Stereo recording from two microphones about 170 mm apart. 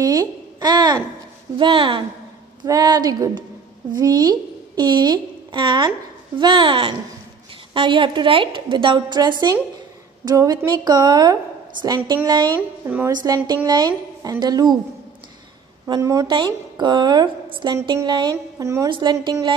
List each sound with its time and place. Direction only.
0.0 s a child's voice: 20° right (ahead or behind)
12.8 s a woman's voice: 10° right (ahead or behind)
13.1 s a woman's voice: 25° right (ahead or behind)
15.9 s a woman's voice: 20° right (ahead or behind)